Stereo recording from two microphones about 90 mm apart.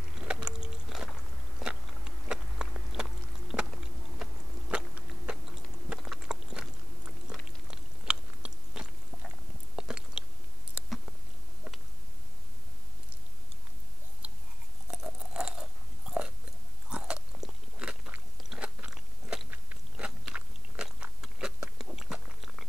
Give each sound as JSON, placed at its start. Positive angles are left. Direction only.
{"t": 0.2, "sound": "a sound", "side_deg": -10}
{"t": 4.2, "sound": "biting", "side_deg": -10}
{"t": 7.2, "sound": "chewing", "side_deg": -10}
{"t": 9.8, "sound": "biting", "side_deg": -10}
{"t": 14.2, "sound": "chewing", "side_deg": -10}
{"t": 16.9, "sound": "biting", "side_deg": -10}
{"t": 18.9, "sound": "crunch", "side_deg": -5}
{"t": 19.5, "sound": "biting", "side_deg": -15}